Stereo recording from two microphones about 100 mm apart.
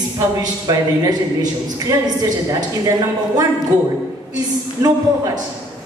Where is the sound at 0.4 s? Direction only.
40° right (ahead or behind).